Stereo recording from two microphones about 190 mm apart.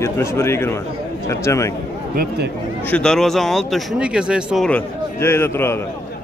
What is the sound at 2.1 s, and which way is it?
Speech, 55° right (ahead or behind).